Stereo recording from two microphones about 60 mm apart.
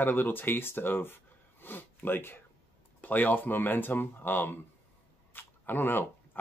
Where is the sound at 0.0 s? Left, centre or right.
Left.